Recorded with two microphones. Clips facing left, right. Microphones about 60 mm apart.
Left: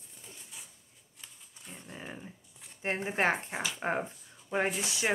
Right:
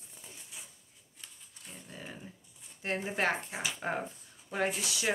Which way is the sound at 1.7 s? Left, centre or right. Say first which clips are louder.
Left 2 dB; left.